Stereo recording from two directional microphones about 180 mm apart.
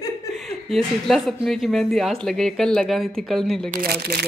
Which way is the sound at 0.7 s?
Centre (ahead or behind).